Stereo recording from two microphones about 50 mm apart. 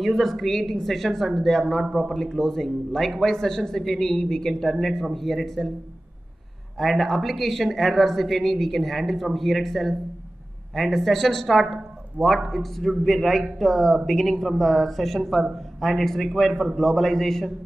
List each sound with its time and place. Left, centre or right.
0.0 s speech: centre
6.8 s speech: centre